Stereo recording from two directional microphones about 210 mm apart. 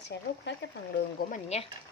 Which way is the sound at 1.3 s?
30° left (ahead or behind).